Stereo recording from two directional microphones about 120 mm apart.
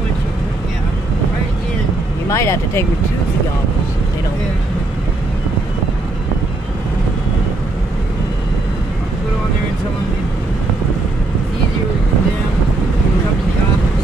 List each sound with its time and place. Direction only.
2.2 s speech: 25° left (ahead or behind)